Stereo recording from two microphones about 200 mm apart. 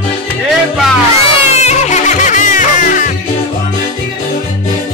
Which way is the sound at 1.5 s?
35° left (ahead or behind).